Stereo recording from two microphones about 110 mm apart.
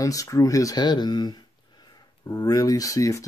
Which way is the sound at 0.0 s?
30° left (ahead or behind).